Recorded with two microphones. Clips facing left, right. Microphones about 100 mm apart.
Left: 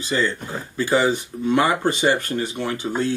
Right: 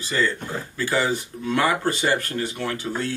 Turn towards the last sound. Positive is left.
turn(degrees=20)  # may be behind; listen again after turning